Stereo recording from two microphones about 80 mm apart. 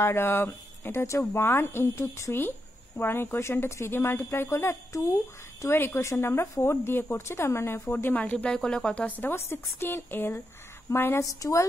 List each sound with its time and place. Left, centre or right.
0.0 s speech: left
9.3 s speech: left
11.3 s a woman's voice: left